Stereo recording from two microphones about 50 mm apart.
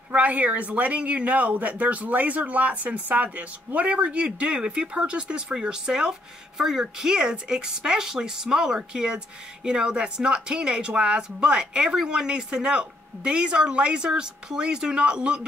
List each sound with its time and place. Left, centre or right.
0.1 s speech: right